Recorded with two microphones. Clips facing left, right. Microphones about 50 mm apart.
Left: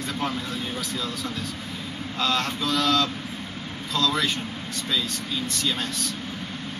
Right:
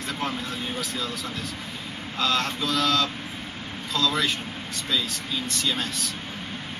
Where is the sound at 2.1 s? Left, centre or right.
Centre.